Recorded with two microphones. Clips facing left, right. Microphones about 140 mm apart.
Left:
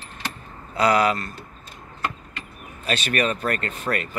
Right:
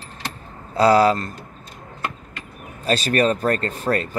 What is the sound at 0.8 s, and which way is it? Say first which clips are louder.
Speech: right 5 dB; 30° right (ahead or behind).